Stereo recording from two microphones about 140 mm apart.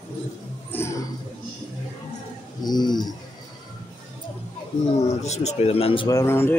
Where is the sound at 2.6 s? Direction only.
30° left (ahead or behind).